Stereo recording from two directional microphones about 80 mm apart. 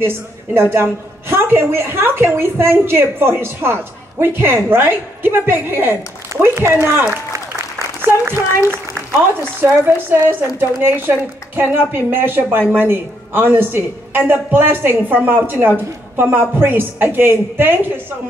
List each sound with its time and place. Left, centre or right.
0.0 s a woman's voice: right
8.0 s a sound: right
9.3 s a woman's voice: right